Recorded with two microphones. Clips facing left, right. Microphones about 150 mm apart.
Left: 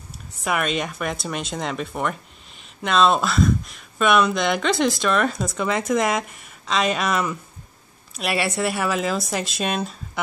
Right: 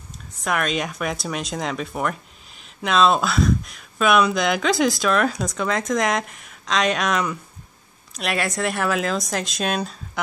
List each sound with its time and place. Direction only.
0.4 s speech: 5° left (ahead or behind)